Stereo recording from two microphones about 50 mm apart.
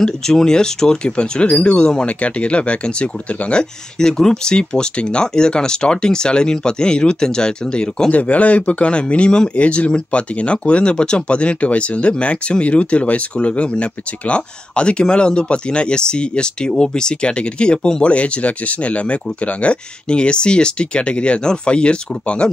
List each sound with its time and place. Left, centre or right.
0.0 s speech: centre